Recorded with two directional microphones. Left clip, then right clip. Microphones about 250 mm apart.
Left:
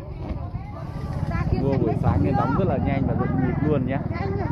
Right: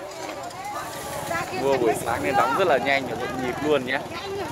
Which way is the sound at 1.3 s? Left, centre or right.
Right.